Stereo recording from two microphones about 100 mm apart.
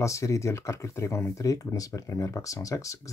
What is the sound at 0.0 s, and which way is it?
Speech, 30° left (ahead or behind).